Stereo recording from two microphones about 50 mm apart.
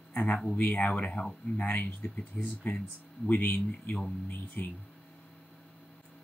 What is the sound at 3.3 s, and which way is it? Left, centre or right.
Speech, left.